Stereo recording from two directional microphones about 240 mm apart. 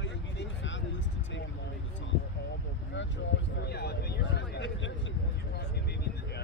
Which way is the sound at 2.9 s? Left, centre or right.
Left.